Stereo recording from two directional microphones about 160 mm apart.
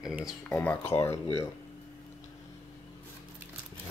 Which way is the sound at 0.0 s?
5° right (ahead or behind).